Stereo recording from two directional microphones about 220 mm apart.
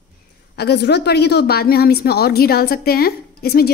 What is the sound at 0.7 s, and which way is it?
A woman's voice, 50° left (ahead or behind).